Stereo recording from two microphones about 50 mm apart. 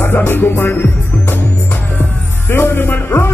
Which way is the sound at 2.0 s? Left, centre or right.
Left.